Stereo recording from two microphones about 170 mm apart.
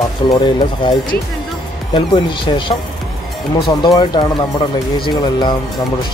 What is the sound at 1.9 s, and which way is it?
Speech, 30° left (ahead or behind).